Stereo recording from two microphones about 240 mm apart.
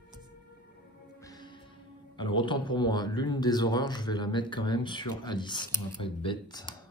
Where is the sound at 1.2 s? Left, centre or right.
Centre.